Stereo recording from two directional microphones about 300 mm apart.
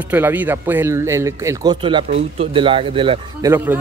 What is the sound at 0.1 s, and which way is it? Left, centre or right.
Speech, centre.